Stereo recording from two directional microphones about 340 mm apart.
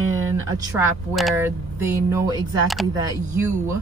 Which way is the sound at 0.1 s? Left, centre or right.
Right.